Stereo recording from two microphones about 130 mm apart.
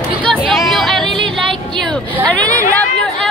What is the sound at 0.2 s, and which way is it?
Music, 5° left (ahead or behind).